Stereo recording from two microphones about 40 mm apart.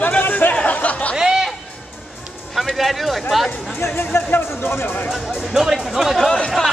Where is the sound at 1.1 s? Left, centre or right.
Centre.